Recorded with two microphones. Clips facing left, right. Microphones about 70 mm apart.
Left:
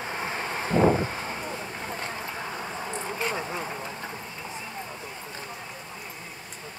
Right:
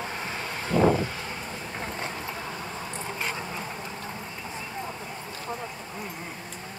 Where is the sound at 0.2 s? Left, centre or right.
Left.